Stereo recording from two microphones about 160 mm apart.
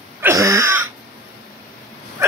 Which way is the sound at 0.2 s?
20° right (ahead or behind).